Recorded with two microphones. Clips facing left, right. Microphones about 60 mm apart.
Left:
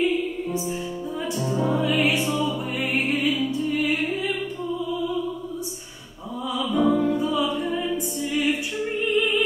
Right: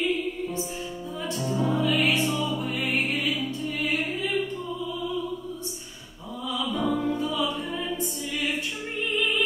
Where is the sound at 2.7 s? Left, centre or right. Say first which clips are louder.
Left 2 dB; centre.